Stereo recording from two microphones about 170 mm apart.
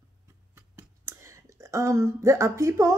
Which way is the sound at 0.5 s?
15° right (ahead or behind).